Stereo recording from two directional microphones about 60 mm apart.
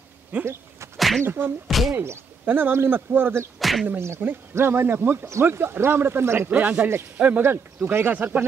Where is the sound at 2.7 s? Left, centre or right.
Right.